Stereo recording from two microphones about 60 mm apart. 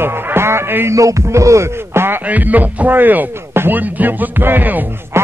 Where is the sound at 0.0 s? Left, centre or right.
Right.